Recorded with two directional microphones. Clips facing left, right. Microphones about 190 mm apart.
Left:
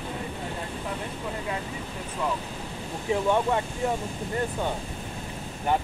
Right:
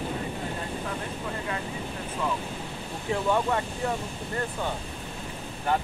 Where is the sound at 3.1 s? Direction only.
15° left (ahead or behind).